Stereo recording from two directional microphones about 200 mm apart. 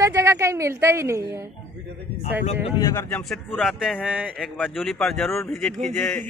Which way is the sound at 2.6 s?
20° left (ahead or behind).